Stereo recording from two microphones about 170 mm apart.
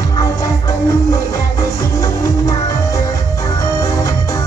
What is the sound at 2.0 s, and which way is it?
Music, 20° left (ahead or behind).